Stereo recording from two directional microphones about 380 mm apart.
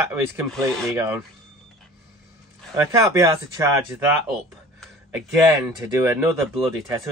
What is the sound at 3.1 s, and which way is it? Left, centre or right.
Speech, centre.